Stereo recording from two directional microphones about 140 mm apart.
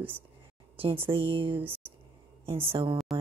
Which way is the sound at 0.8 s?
40° right (ahead or behind).